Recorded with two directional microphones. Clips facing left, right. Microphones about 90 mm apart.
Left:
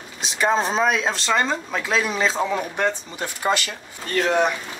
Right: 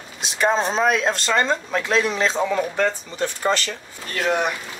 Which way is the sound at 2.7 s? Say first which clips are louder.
Right 1 dB; 15° left (ahead or behind).